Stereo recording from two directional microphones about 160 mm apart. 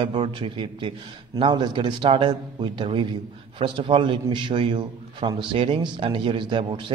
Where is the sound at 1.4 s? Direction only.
30° right (ahead or behind).